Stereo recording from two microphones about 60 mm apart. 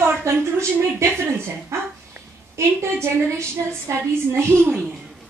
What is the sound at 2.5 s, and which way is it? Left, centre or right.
Speech, right.